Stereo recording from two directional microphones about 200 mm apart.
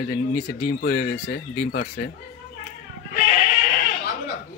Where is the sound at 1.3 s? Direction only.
50° left (ahead or behind).